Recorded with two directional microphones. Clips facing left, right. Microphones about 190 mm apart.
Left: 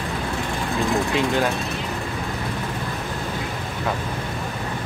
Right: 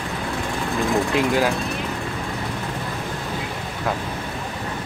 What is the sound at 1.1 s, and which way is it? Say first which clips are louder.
Speech: right 2 dB; 5° right (ahead or behind).